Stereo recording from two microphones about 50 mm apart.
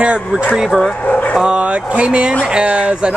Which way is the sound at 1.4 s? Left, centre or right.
Right.